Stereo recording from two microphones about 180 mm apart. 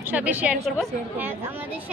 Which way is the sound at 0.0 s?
10° right (ahead or behind).